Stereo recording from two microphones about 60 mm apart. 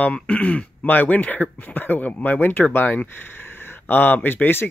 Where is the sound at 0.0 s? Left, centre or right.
Left.